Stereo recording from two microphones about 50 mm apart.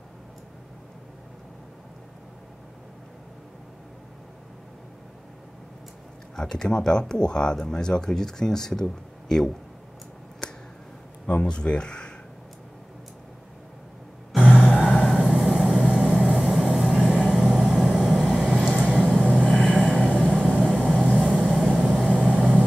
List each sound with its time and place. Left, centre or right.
6.3 s speech: centre
11.2 s speech: left
14.3 s vehicle: centre
19.6 s music: centre
20.6 s vehicle: centre